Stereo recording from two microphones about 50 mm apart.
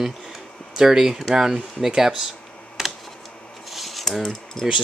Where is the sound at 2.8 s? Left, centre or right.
Centre.